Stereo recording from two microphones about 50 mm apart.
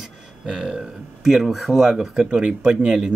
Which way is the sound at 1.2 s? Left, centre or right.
Centre.